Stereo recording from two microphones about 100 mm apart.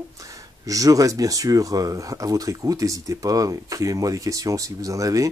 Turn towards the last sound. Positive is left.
turn(degrees=-35)  # may be behind; listen again after turning